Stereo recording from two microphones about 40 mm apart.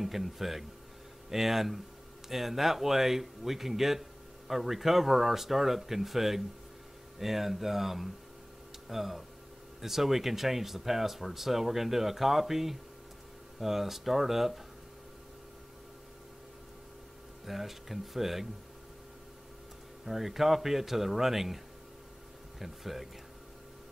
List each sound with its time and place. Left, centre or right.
0.0 s speech: centre
17.5 s speech: centre
20.1 s speech: centre
22.6 s speech: centre